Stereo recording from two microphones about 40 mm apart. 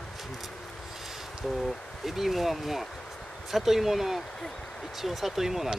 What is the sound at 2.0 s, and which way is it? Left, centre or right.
Speech, centre.